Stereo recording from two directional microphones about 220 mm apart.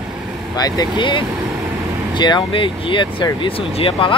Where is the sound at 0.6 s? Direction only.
15° left (ahead or behind).